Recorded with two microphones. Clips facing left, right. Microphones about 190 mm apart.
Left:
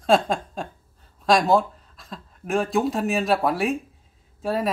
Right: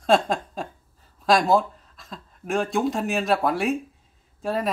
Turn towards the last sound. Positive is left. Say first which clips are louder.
# left 1 dB
turn(degrees=0)  # may be behind; listen again after turning